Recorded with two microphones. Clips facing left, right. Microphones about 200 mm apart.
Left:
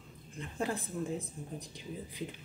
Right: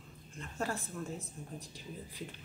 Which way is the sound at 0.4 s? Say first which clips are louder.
Left 3 dB; 15° left (ahead or behind).